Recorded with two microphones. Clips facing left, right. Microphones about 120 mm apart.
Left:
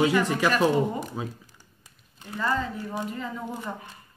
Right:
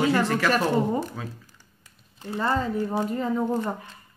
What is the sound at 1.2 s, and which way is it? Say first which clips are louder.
Speech: left 3 dB; 20° left (ahead or behind).